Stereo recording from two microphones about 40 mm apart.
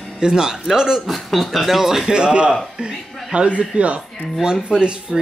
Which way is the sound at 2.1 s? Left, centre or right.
Right.